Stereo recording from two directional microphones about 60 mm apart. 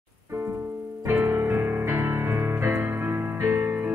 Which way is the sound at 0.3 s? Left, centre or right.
Right.